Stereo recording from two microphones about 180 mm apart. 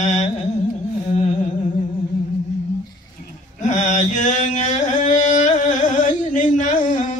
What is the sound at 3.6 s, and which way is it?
Mantra, 40° left (ahead or behind).